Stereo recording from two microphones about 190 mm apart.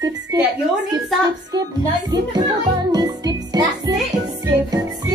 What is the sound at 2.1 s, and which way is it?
Music, 20° right (ahead or behind).